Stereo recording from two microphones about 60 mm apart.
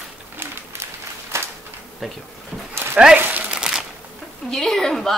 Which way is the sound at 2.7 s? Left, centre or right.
Right.